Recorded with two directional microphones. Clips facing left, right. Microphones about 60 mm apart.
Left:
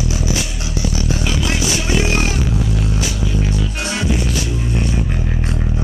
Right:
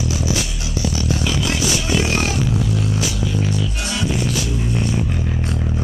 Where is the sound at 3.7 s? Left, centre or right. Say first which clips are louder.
Left 3 dB; left.